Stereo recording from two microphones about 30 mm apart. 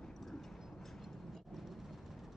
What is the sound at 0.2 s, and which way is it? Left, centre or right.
Vehicle, centre.